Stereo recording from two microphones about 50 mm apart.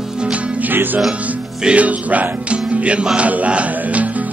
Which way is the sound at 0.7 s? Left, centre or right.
Right.